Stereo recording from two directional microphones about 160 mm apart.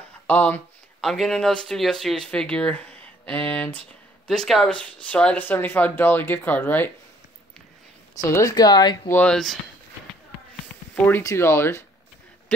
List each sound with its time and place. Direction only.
0.3 s speech: 10° left (ahead or behind)
3.3 s a sound: 10° left (ahead or behind)
4.3 s speech: centre (ahead or behind)
8.2 s speech: 20° left (ahead or behind)
9.1 s speech: 5° left (ahead or behind)
11.1 s speech: 15° left (ahead or behind)